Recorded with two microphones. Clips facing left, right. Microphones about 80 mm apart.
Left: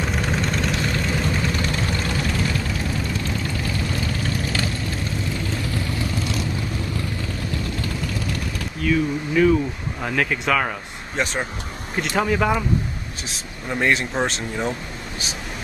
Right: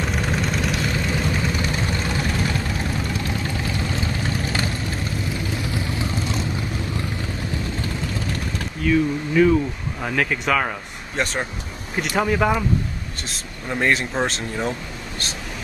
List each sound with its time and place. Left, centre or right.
0.0 s vehicle: centre
3.9 s vehicle: right
8.8 s a sound: centre
10.0 s speech: centre